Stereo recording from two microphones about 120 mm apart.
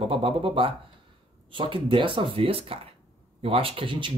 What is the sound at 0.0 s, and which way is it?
Speech, 50° right (ahead or behind).